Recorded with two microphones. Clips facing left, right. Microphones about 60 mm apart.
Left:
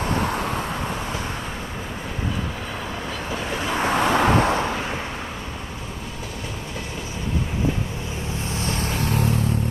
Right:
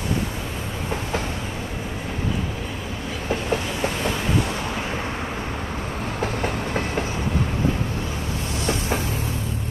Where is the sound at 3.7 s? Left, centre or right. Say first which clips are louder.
Left 5 dB; left.